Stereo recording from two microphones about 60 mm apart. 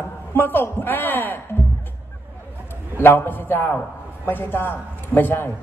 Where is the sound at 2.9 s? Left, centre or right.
Left.